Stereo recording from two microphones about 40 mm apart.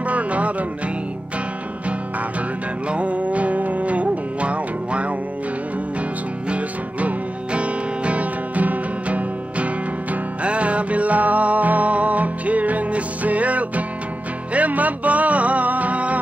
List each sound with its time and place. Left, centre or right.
0.0 s music: right
2.9 s music: right
6.5 s music: right